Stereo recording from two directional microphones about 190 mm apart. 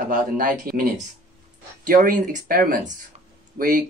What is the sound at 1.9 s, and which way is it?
Speech, 50° right (ahead or behind).